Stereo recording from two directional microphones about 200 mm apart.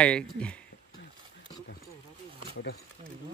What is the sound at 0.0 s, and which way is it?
Speech, 5° left (ahead or behind).